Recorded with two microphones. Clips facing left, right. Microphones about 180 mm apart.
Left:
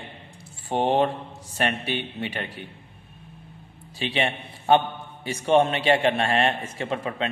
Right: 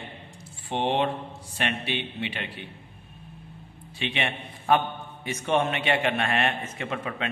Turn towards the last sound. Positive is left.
turn(degrees=30)  # may be behind; listen again after turning